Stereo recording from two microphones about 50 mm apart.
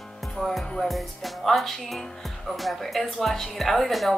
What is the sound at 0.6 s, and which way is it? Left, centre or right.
Music, left.